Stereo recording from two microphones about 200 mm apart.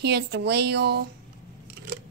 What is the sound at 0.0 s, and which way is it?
Speech, 55° right (ahead or behind).